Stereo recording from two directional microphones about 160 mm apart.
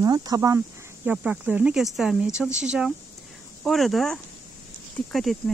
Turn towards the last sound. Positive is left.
turn(degrees=0)  # may be behind; listen again after turning